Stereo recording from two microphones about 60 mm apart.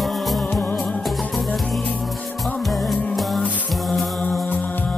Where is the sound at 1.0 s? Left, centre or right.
Centre.